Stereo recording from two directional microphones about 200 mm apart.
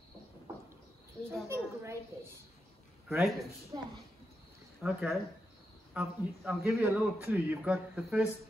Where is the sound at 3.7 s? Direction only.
20° right (ahead or behind).